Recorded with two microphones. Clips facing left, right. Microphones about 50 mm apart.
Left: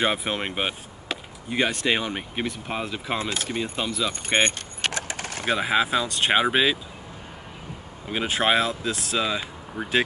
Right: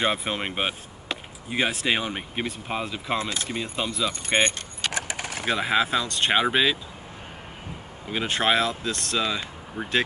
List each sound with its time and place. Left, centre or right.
0.0 s speech: centre
4.9 s speech: centre
5.2 s a sound: centre
5.5 s speech: centre
8.1 s speech: centre